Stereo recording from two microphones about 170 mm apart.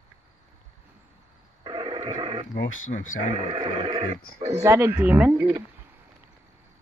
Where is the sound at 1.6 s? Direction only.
30° right (ahead or behind).